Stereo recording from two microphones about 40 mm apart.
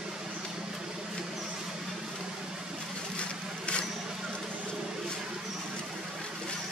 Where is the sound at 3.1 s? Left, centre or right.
Left.